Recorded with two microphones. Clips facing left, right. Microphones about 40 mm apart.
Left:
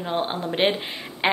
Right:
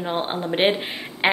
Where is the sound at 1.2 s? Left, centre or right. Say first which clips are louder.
Right 2 dB; centre.